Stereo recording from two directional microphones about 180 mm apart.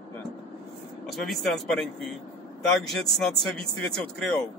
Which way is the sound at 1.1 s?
Centre (ahead or behind).